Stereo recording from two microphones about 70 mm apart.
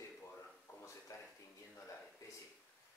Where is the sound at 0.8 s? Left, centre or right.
Left.